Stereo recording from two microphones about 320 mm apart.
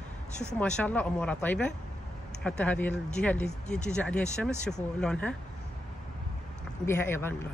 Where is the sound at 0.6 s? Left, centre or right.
Centre.